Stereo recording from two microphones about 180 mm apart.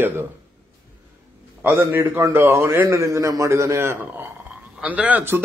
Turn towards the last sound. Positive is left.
turn(degrees=-10)  # may be behind; listen again after turning